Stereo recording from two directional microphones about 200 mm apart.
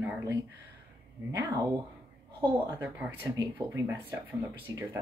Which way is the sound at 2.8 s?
10° right (ahead or behind).